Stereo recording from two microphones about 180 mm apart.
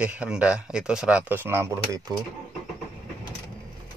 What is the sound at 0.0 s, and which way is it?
Speech, 5° right (ahead or behind).